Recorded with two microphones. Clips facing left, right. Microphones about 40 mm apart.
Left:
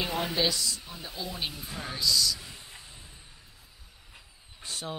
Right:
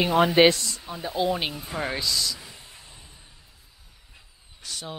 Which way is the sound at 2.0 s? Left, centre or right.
Right.